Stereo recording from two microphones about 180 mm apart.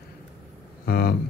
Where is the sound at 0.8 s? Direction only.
60° left (ahead or behind).